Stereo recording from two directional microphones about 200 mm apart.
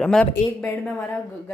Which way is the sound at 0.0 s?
5° left (ahead or behind).